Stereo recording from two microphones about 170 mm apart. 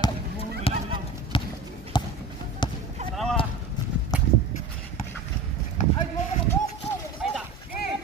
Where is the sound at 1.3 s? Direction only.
30° left (ahead or behind).